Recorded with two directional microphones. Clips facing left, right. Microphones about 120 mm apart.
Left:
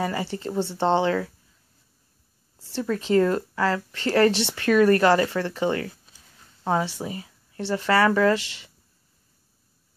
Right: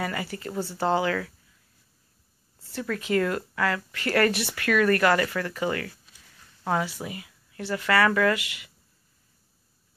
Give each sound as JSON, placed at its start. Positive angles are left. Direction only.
{"t": 0.0, "sound": "speech", "side_deg": 30}
{"t": 2.6, "sound": "speech", "side_deg": 30}